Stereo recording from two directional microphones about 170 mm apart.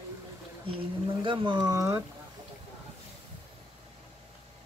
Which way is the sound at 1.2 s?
30° right (ahead or behind).